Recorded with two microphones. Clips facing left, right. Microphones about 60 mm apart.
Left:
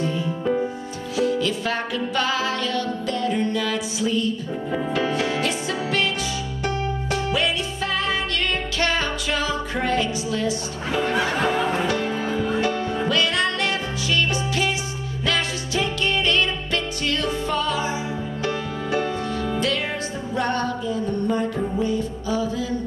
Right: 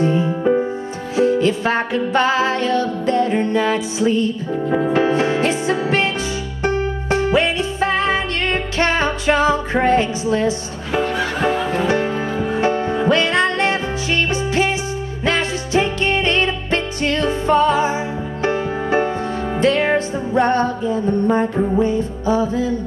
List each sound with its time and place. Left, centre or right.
0.0 s music: right